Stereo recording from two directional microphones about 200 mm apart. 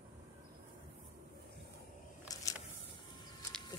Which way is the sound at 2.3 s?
15° left (ahead or behind).